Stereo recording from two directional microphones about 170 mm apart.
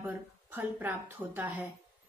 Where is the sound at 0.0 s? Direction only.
10° right (ahead or behind).